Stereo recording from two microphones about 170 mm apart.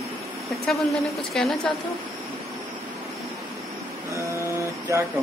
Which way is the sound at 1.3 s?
Centre (ahead or behind).